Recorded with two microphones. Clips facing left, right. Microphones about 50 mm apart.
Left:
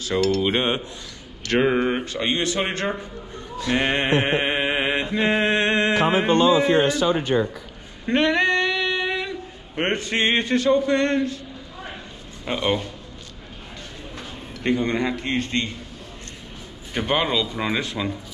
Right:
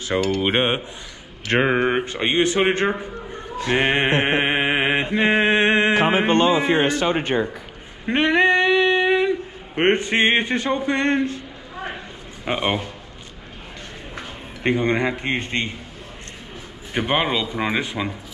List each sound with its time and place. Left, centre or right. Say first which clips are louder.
0.4 s speech: right 2 dB; right
3.7 s mantra: right 2 dB; right
6.0 s music: even; right
6.7 s a sound: even; right
8.0 s a sound: right 2 dB; right
12.4 s speech: right 1 dB; right
14.1 s a man's voice: right 2 dB; right
16.9 s speech: right 1 dB; centre